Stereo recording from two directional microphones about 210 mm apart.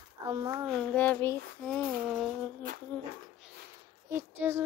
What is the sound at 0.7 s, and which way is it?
Child singing, 5° left (ahead or behind).